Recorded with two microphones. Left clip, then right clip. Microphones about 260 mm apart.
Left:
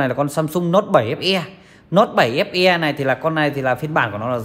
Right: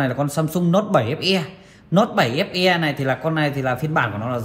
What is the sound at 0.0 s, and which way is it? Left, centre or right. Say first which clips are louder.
Speech: left 3 dB; left.